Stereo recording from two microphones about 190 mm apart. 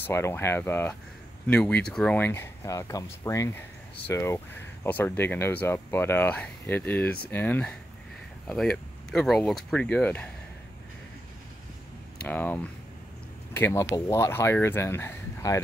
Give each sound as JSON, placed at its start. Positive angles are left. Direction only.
{"t": 0.0, "sound": "speech", "side_deg": 15}
{"t": 12.2, "sound": "speech", "side_deg": 10}